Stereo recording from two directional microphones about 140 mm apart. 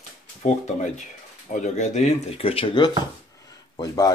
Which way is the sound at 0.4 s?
60° left (ahead or behind).